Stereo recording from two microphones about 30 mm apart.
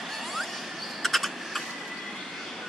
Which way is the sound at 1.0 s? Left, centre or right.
Centre.